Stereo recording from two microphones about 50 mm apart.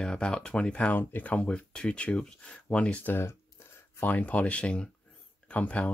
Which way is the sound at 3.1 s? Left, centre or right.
Left.